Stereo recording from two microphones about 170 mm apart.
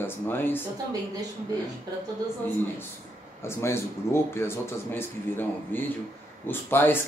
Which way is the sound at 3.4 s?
15° left (ahead or behind).